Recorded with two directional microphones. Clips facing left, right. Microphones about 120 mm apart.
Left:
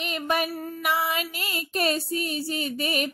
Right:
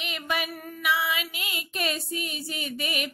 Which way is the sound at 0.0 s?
40° left (ahead or behind).